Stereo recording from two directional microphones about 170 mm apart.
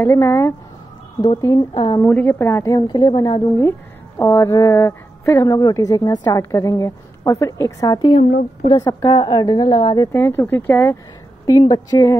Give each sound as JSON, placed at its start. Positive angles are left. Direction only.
{"t": 0.0, "sound": "a woman's voice", "side_deg": 15}
{"t": 2.0, "sound": "a woman's voice", "side_deg": 10}
{"t": 8.2, "sound": "a woman's voice", "side_deg": 65}
{"t": 8.6, "sound": "speech", "side_deg": 20}
{"t": 10.1, "sound": "a woman's voice", "side_deg": 15}